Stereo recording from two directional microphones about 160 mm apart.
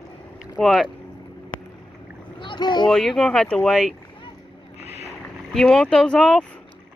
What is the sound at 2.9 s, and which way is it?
Speech, centre (ahead or behind).